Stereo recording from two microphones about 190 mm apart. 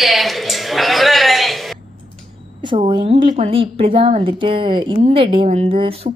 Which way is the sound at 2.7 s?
25° right (ahead or behind).